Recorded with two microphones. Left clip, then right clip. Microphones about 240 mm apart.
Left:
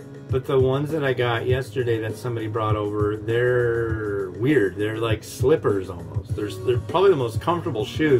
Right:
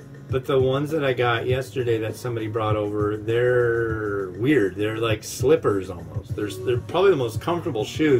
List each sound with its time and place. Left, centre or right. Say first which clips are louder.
0.3 s speech: even; centre